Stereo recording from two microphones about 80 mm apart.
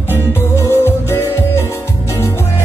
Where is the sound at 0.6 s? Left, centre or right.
Left.